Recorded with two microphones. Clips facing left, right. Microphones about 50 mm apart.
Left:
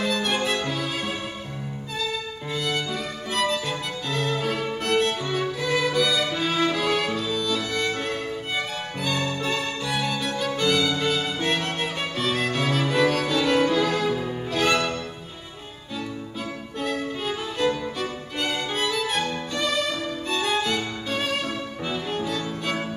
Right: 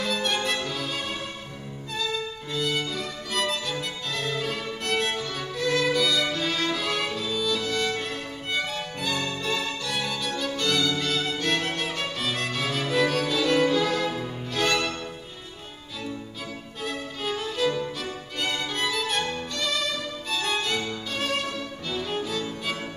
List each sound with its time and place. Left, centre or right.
0.0 s violin: centre
4.8 s music: centre
8.5 s violin: centre
9.9 s music: centre
16.8 s music: centre
19.5 s music: centre
20.2 s violin: centre
22.1 s music: centre